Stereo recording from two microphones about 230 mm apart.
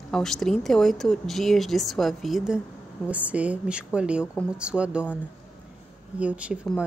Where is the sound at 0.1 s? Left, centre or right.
Centre.